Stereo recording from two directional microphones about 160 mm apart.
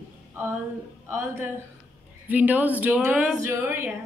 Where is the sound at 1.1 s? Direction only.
15° right (ahead or behind).